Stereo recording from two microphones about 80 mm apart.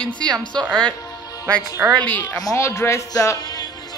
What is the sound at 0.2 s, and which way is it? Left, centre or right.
Speech, right.